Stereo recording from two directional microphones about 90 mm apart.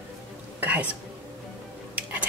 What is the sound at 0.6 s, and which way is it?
Whispering, 20° right (ahead or behind).